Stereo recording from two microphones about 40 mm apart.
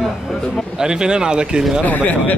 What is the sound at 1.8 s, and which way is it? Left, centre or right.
Speech, left.